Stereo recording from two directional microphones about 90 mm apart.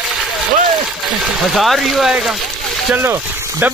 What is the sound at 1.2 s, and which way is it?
Speech, 5° right (ahead or behind).